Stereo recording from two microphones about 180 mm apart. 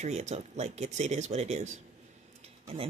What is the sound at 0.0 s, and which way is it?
Speech, 40° right (ahead or behind).